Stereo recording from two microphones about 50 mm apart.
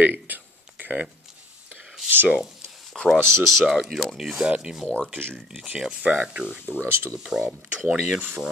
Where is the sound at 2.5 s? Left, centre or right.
Centre.